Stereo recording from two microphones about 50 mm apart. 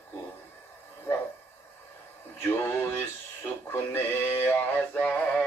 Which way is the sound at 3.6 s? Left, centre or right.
Left.